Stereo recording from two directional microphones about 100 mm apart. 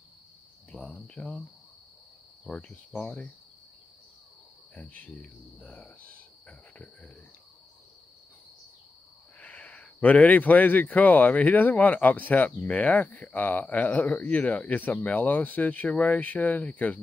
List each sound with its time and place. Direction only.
0.7 s cricket: 15° left (ahead or behind)
2.4 s speech: 5° left (ahead or behind)
4.7 s speech: 10° left (ahead or behind)
9.4 s speech: 15° left (ahead or behind)